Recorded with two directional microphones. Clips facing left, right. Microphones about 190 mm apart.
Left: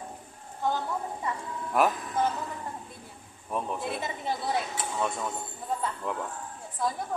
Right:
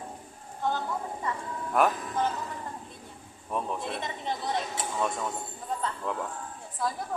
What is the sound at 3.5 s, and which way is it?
Speech, 5° left (ahead or behind).